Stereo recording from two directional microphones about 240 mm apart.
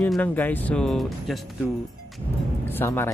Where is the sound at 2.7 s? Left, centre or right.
Centre.